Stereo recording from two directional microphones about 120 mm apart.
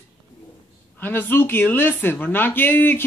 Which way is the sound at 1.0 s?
15° left (ahead or behind).